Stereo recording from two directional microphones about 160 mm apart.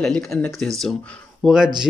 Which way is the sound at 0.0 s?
5° left (ahead or behind).